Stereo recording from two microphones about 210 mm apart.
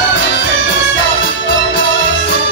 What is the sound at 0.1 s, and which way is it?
Music, 60° left (ahead or behind).